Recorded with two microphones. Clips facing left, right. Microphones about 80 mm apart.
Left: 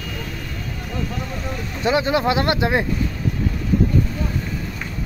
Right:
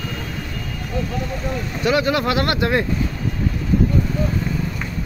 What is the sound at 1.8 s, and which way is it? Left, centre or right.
Speech, left.